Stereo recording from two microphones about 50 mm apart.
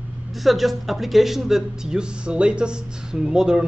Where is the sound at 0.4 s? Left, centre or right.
Centre.